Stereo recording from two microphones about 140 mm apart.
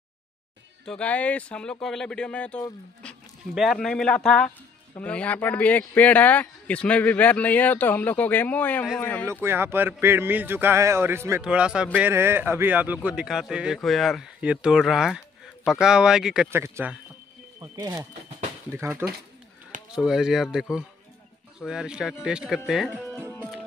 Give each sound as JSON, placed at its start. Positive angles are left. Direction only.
{"t": 0.8, "sound": "speech", "side_deg": 10}
{"t": 9.3, "sound": "speech", "side_deg": -15}
{"t": 11.4, "sound": "speech", "side_deg": -5}
{"t": 16.4, "sound": "speech", "side_deg": -20}
{"t": 20.0, "sound": "speech", "side_deg": -5}